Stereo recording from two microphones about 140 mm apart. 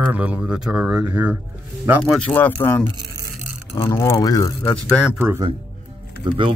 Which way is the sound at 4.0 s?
25° left (ahead or behind).